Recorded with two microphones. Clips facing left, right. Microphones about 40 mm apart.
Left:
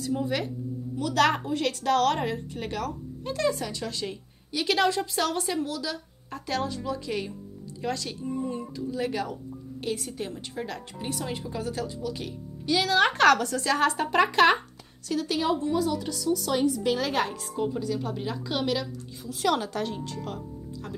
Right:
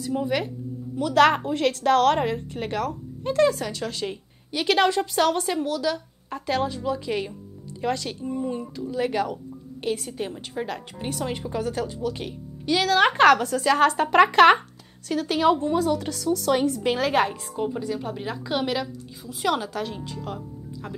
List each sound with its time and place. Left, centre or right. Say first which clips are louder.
0.0 s a woman's voice: right 3 dB; centre
3.3 s a woman's voice: right 6 dB; right; by 7.3 s centre
7.8 s a woman's voice: right 4 dB; right
16.9 s a woman's voice: right 5 dB; right